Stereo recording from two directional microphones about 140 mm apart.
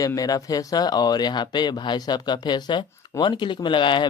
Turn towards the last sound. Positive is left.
turn(degrees=35)  # may be behind; listen again after turning